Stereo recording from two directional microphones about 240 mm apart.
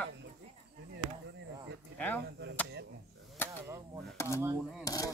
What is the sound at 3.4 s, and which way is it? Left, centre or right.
Speech, centre.